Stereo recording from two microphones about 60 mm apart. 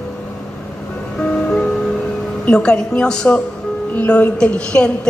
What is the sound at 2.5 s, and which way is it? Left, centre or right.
A man's voice, centre.